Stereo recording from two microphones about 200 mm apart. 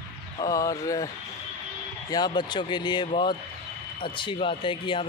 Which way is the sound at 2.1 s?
20° left (ahead or behind).